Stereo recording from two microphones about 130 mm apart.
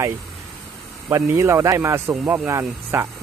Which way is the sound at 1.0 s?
25° right (ahead or behind).